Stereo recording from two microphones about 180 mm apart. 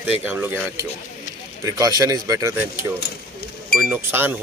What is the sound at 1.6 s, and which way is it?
Speech, 20° right (ahead or behind).